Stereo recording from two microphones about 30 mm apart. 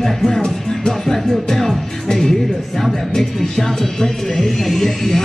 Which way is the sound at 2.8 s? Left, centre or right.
Centre.